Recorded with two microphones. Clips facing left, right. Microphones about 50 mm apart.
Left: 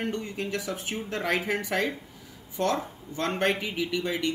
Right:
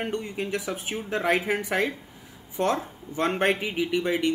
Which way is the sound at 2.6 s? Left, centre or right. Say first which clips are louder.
Right 2 dB; right.